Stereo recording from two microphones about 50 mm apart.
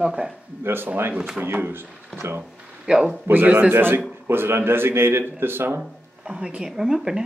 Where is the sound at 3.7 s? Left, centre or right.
Right.